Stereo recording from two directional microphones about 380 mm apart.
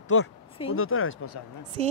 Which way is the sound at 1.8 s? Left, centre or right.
Centre.